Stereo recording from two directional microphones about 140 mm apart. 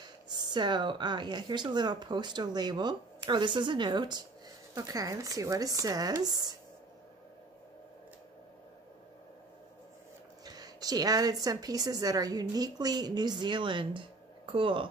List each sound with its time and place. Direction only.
0.0 s speech: 30° right (ahead or behind)
10.4 s a woman's voice: 30° right (ahead or behind)